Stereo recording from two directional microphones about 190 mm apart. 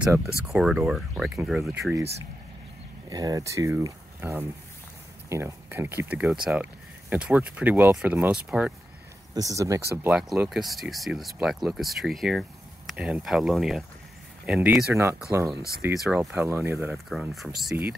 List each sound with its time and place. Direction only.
0.0 s speech: 5° right (ahead or behind)
3.1 s speech: 20° right (ahead or behind); by 8.7 s 5° right (ahead or behind)
9.3 s speech: 15° right (ahead or behind)
10.0 s speech: 5° right (ahead or behind)
15.8 s speech: 5° right (ahead or behind)
16.2 s speech: 15° right (ahead or behind)
16.9 s speech: centre (ahead or behind)